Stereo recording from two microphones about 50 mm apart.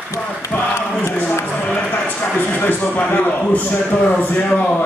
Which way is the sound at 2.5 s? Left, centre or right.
Left.